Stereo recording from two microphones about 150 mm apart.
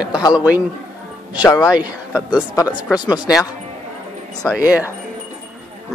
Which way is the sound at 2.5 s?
25° left (ahead or behind).